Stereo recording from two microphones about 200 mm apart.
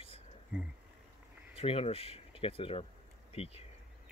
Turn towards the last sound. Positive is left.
turn(degrees=30)  # may be behind; listen again after turning